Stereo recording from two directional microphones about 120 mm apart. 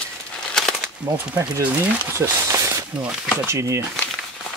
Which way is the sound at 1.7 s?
25° right (ahead or behind).